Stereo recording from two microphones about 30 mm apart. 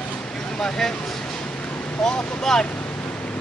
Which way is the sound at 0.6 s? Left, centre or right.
Centre.